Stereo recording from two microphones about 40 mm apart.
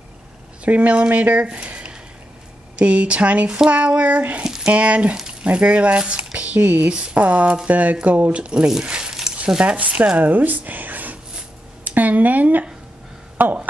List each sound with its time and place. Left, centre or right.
0.7 s speech: right
3.4 s speech: centre
3.7 s speech: right
8.6 s speech: centre
10.1 s speech: right
11.8 s a sound: right
13.4 s speech: right